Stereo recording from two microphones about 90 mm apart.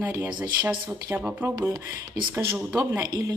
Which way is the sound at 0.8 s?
20° right (ahead or behind).